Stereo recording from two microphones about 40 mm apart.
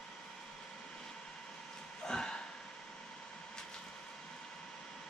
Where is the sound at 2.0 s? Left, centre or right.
Centre.